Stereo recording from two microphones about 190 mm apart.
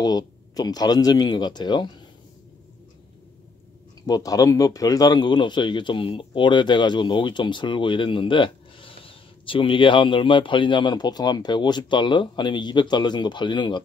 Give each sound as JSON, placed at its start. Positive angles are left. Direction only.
{"t": 0.0, "sound": "speech", "side_deg": 20}
{"t": 4.0, "sound": "speech", "side_deg": 20}